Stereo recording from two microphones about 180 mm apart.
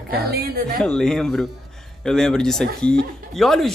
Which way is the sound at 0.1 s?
55° right (ahead or behind).